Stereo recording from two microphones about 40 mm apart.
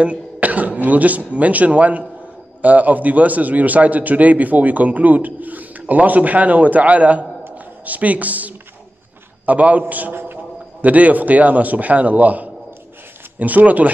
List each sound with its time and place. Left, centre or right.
0.0 s a man's voice: right
10.1 s a sound: right
10.8 s a man's voice: right